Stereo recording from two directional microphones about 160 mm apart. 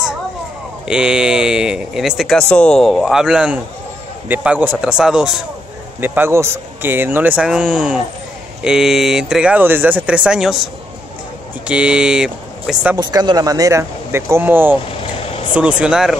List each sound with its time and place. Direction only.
0.8 s speech: 5° right (ahead or behind)
11.6 s speech: 5° right (ahead or behind)
12.9 s speech: 25° right (ahead or behind); by 16.2 s 5° right (ahead or behind)